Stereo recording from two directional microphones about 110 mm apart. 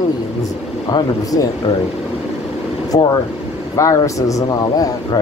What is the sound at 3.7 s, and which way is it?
Speech, 30° left (ahead or behind).